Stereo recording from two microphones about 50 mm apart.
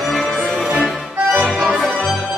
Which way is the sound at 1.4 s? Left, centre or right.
Centre.